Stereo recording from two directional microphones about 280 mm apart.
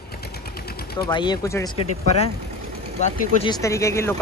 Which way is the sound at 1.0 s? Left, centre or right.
Centre.